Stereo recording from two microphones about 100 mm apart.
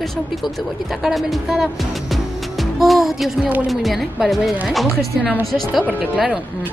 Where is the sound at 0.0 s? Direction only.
5° left (ahead or behind).